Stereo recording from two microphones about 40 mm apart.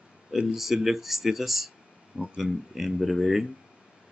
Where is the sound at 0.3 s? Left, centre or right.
Centre.